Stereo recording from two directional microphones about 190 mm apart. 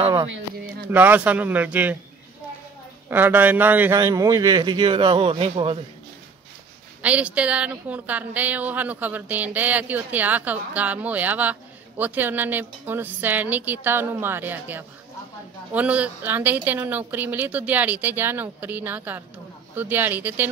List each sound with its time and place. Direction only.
0.0 s a sound: 25° right (ahead or behind)
0.8 s a woman's voice: 10° right (ahead or behind)
3.1 s a man's voice: 10° right (ahead or behind); by 5.8 s 30° right (ahead or behind)
7.0 s a woman's voice: 5° right (ahead or behind)